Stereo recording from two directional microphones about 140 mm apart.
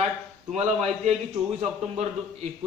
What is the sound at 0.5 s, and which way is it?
Speech, 55° right (ahead or behind).